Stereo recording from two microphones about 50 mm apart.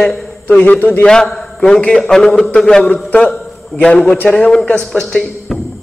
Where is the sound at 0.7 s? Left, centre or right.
Left.